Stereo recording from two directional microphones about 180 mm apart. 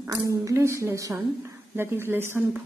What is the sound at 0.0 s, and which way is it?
A woman's voice, 15° right (ahead or behind).